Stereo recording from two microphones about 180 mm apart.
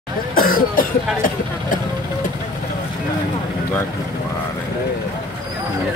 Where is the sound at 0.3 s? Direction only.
55° left (ahead or behind).